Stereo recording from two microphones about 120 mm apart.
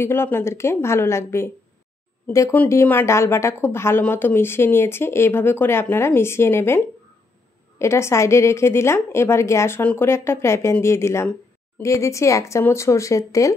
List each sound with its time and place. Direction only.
0.0 s a woman's voice: 20° left (ahead or behind)
7.8 s a woman's voice: 25° left (ahead or behind)